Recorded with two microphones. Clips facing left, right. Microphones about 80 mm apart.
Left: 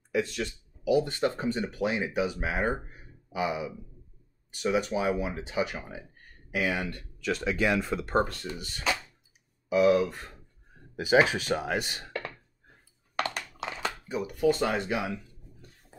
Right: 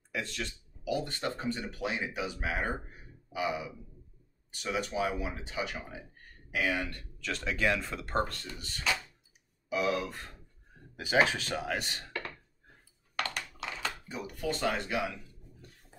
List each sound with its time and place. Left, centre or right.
0.1 s speech: centre
11.0 s speech: centre
13.1 s computer keyboard: left
14.6 s speech: centre